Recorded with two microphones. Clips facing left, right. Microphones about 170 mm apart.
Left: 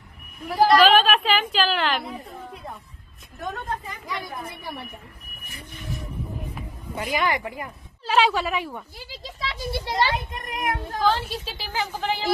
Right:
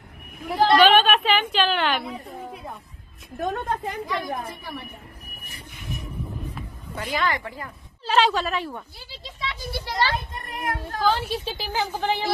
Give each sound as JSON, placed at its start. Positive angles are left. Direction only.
{"t": 0.7, "sound": "a sound", "side_deg": 0}
{"t": 3.3, "sound": "a woman's voice", "side_deg": -55}
{"t": 6.5, "sound": "speech", "side_deg": 10}
{"t": 8.0, "sound": "a woman's voice", "side_deg": 5}
{"t": 9.2, "sound": "a child's voice", "side_deg": 30}
{"t": 11.1, "sound": "a woman's voice", "side_deg": -20}